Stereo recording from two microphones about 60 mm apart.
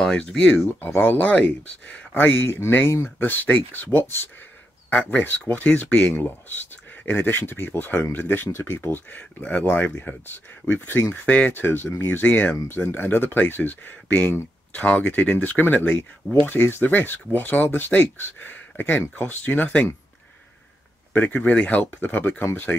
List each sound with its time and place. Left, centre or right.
0.0 s speech: centre
0.8 s speech: left
9.4 s speech: left
9.7 s speech: left
11.2 s speech: left
12.6 s speech: left
21.1 s speech: left